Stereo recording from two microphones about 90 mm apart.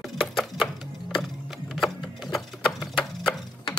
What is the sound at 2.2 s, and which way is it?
Sewing machine, centre (ahead or behind).